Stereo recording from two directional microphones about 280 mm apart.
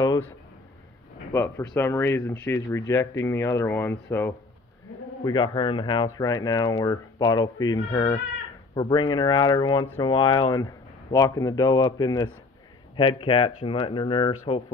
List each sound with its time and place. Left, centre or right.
0.0 s a man's voice: centre
1.3 s speech: centre